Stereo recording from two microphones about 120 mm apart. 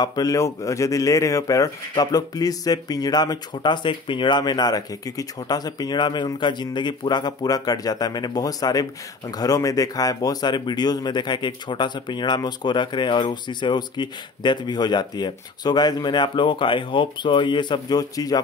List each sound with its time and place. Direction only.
0.0 s speech: 35° left (ahead or behind)